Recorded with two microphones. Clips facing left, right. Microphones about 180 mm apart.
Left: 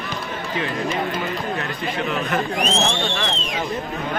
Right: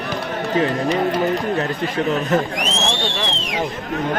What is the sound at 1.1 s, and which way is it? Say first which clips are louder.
Speech: right 6 dB; 35° right (ahead or behind).